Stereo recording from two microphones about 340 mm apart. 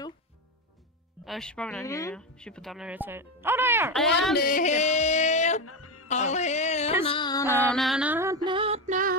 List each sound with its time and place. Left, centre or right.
1.2 s a woman's voice: centre
4.4 s music: left
5.6 s music: left
6.0 s music: centre
7.6 s female singing: centre; by 9.1 s right